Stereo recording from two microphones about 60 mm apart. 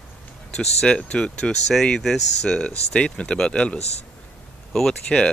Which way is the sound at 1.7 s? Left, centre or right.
Centre.